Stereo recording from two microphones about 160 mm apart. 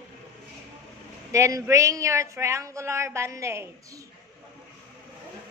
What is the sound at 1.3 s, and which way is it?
A woman's voice, 20° right (ahead or behind).